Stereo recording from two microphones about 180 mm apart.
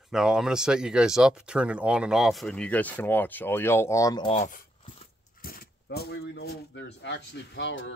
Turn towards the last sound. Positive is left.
turn(degrees=85)